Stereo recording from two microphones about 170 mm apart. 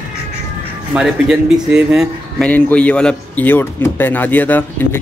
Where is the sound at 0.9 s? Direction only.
5° right (ahead or behind).